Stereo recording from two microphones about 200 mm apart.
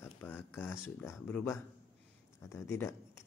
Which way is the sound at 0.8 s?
10° left (ahead or behind).